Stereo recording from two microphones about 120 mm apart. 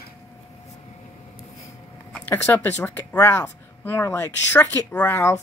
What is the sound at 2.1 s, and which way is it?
Speech, 20° left (ahead or behind).